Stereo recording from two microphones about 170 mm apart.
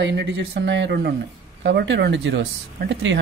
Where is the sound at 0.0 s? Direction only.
90° right.